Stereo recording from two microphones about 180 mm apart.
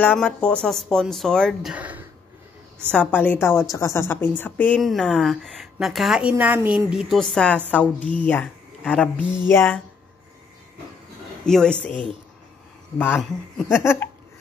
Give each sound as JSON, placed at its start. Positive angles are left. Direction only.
{"t": 0.0, "sound": "speech", "side_deg": 5}
{"t": 2.9, "sound": "a woman's voice", "side_deg": 10}
{"t": 11.4, "sound": "speech", "side_deg": 5}
{"t": 11.9, "sound": "speech", "side_deg": -30}
{"t": 13.0, "sound": "a woman's voice", "side_deg": 10}